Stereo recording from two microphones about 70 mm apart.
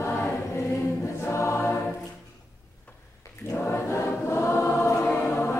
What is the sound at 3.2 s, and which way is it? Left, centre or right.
Choir, left.